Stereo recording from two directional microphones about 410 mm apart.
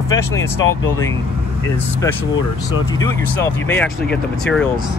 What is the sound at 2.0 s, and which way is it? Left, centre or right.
Speech, centre.